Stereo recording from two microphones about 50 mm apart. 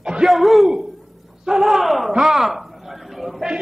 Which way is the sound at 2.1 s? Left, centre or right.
Centre.